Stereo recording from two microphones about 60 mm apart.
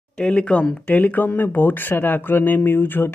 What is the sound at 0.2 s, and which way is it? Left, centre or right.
Speech, centre.